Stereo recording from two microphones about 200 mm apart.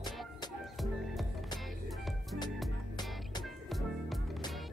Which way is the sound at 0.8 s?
Centre (ahead or behind).